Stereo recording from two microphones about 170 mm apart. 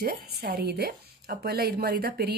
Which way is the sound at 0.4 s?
70° right (ahead or behind).